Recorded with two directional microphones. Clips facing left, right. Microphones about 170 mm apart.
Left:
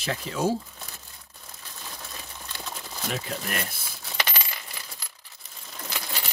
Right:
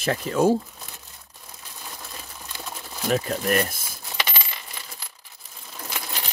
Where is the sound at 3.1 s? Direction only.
45° right (ahead or behind).